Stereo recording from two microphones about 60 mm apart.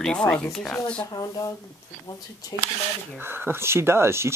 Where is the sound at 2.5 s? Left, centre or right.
Left.